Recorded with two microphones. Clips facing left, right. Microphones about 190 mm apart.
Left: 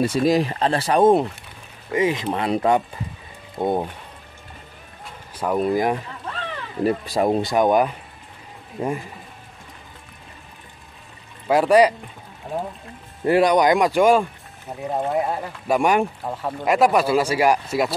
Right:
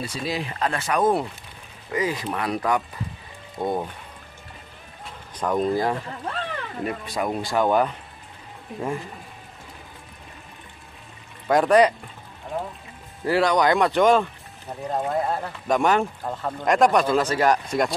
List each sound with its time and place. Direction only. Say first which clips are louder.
0.1 s speech: left 10 dB; 45° left (ahead or behind); by 3.9 s 25° left (ahead or behind)
5.0 s a sound: left 1 dB; 5° left (ahead or behind)
6.8 s speech: left 8 dB; 35° left (ahead or behind)
7.5 s speech: even; 15° left (ahead or behind)
11.4 s speech: left 2 dB; 10° left (ahead or behind)
13.2 s speech: left 4 dB; 20° left (ahead or behind); by 15.0 s centre (ahead or behind)
15.0 s speech: left 2 dB; 15° left (ahead or behind)